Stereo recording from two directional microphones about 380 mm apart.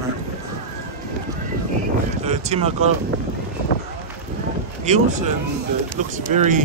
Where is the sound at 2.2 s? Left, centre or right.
Centre.